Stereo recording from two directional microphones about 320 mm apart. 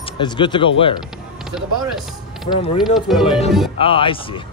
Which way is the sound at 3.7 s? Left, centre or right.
Centre.